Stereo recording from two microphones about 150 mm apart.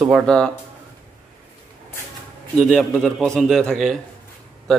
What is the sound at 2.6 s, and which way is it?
A man's voice, centre (ahead or behind).